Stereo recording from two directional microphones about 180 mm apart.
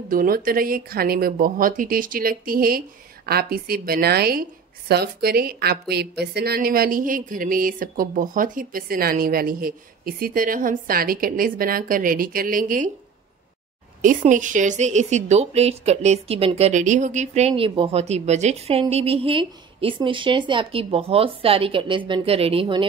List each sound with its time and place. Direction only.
0.1 s a woman's voice: 50° right (ahead or behind)
14.3 s a woman's voice: 45° right (ahead or behind); by 22.8 s 30° right (ahead or behind)